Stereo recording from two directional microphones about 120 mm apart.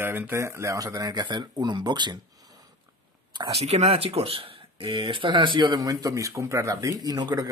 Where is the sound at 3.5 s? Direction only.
60° right (ahead or behind); by 7.4 s 35° right (ahead or behind).